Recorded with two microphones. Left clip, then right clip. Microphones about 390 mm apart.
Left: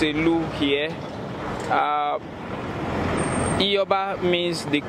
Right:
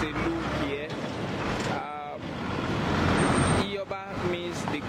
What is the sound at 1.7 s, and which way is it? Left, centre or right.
Speech, left.